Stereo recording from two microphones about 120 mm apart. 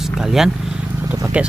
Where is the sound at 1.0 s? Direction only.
25° right (ahead or behind).